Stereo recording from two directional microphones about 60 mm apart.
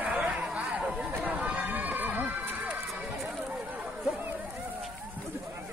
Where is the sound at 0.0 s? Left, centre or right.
Centre.